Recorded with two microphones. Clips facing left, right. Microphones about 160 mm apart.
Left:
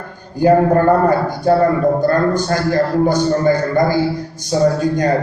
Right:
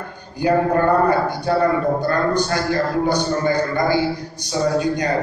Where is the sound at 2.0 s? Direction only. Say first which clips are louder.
Left 4 dB; 45° left (ahead or behind).